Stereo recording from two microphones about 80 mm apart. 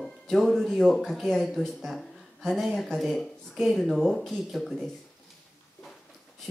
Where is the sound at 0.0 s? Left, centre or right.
Centre.